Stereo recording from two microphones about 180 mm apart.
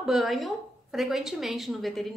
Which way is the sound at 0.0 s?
Centre (ahead or behind).